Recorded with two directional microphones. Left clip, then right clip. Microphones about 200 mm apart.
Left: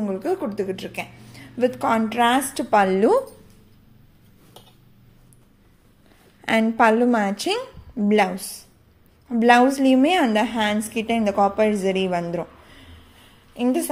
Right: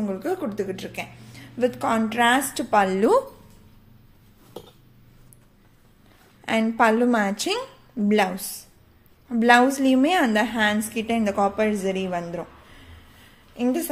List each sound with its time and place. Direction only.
0.0 s a woman's voice: 20° left (ahead or behind)
6.4 s a woman's voice: 15° left (ahead or behind)